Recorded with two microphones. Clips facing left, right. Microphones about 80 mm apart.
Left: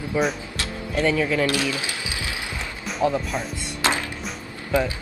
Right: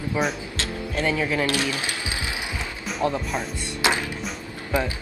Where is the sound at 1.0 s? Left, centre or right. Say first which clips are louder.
Left 3 dB; right.